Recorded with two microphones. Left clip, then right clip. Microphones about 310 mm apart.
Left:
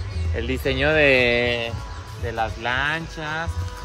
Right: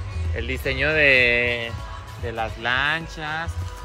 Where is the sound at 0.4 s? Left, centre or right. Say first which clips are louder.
Left 1 dB; left.